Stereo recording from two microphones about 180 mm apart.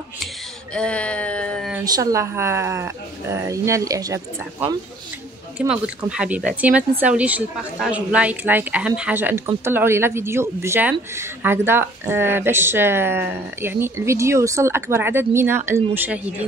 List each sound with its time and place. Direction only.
0.7 s speech: 5° left (ahead or behind)
1.9 s speech: 20° right (ahead or behind)
5.6 s speech: 5° right (ahead or behind)